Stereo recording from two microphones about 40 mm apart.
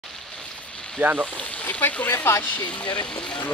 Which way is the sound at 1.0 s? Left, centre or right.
Right.